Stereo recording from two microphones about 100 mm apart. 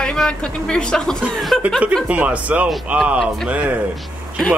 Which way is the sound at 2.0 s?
15° right (ahead or behind).